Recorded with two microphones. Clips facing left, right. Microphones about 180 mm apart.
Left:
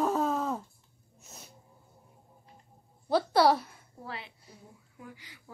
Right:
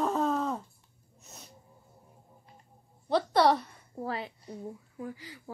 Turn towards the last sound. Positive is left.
turn(degrees=-35)  # may be behind; listen again after turning